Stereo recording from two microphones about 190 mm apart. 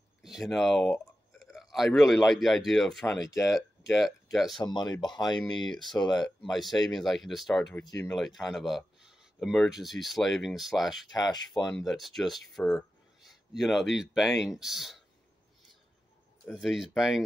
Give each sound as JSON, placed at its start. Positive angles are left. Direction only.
{"t": 0.2, "sound": "speech", "side_deg": 0}
{"t": 4.6, "sound": "speech", "side_deg": 20}
{"t": 6.2, "sound": "speech", "side_deg": 0}
{"t": 11.1, "sound": "speech", "side_deg": 20}
{"t": 11.7, "sound": "speech", "side_deg": 0}
{"t": 16.5, "sound": "speech", "side_deg": 0}